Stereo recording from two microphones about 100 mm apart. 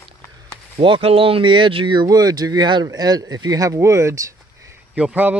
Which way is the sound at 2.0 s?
40° right (ahead or behind).